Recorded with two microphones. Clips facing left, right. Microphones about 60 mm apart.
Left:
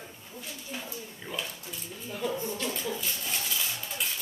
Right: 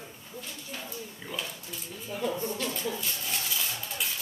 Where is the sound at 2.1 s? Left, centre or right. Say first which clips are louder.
Right 1 dB; centre.